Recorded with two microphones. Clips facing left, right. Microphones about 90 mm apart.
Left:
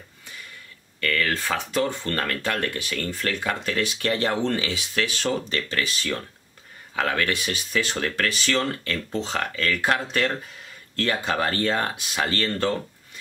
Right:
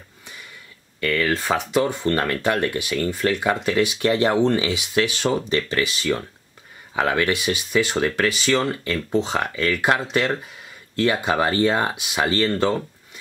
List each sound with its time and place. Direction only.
1.0 s speech: 20° right (ahead or behind)